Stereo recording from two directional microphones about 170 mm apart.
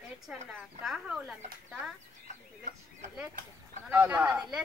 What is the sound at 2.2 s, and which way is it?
Chicken, 45° right (ahead or behind).